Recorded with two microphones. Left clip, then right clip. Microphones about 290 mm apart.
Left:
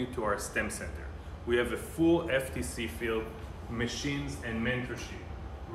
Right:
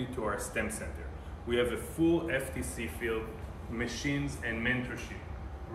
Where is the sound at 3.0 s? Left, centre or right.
Left.